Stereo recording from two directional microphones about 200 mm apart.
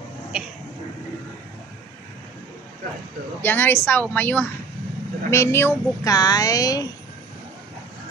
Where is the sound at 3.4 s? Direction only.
10° left (ahead or behind).